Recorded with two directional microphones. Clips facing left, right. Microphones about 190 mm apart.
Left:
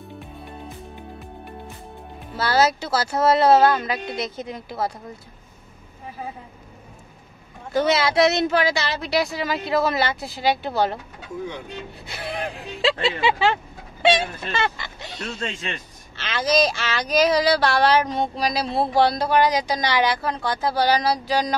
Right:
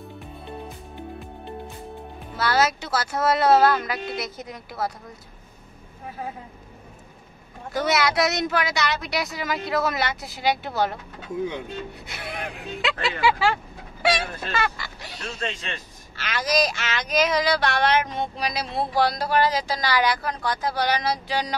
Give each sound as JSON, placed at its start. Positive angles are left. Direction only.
{"t": 2.3, "sound": "speech", "side_deg": 30}
{"t": 7.7, "sound": "speech", "side_deg": 25}
{"t": 12.1, "sound": "speech", "side_deg": 30}
{"t": 16.2, "sound": "speech", "side_deg": 25}